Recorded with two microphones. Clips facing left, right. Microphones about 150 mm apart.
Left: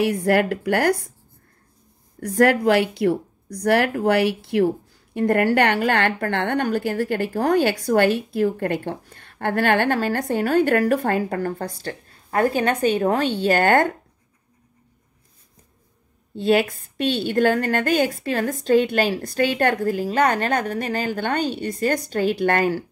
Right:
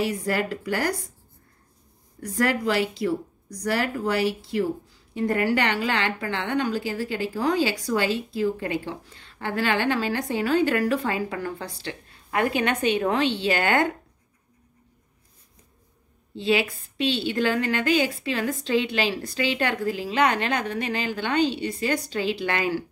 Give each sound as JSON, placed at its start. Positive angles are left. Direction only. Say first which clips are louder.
{"t": 0.0, "sound": "speech", "louder": "left 6 dB", "side_deg": 60}
{"t": 2.1, "sound": "speech", "louder": "left 7 dB", "side_deg": 55}
{"t": 16.3, "sound": "a woman's voice", "louder": "left 5 dB", "side_deg": 50}